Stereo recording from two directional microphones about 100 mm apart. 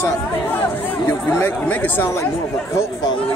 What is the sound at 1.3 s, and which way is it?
Speech, 20° left (ahead or behind).